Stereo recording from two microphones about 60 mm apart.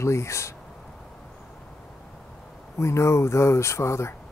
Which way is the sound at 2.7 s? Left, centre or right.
Left.